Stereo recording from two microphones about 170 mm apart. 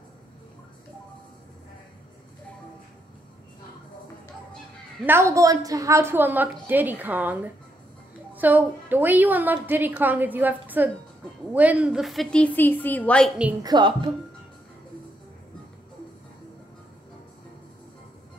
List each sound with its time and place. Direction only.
5.0 s a woman's voice: 15° right (ahead or behind)
8.4 s a woman's voice: 10° right (ahead or behind); by 13.3 s 5° left (ahead or behind)
13.6 s a woman's voice: 25° right (ahead or behind)